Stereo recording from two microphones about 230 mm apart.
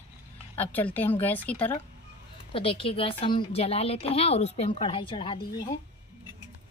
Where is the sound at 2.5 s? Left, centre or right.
Left.